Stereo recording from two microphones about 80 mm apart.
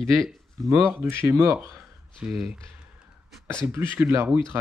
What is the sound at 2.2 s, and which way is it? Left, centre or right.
Speech, centre.